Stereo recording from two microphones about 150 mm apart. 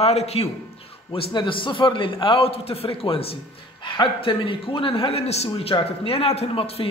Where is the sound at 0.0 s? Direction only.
45° left (ahead or behind).